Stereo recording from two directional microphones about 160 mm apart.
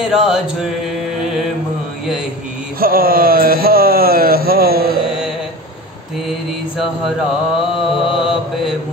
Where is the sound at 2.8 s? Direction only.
65° right (ahead or behind).